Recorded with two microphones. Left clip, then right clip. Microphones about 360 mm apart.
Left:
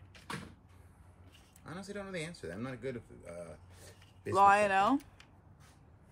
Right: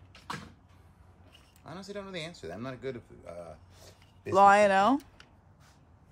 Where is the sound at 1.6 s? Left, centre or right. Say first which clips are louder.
Right 2 dB; centre.